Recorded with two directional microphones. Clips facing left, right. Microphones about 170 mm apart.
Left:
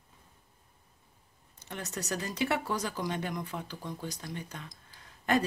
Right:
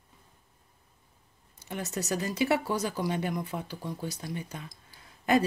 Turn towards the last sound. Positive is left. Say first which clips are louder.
# right 3 dB
turn(degrees=-5)  # may be behind; listen again after turning